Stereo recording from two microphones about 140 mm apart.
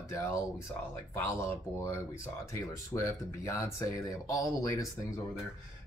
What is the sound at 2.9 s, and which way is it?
Speech, 20° left (ahead or behind).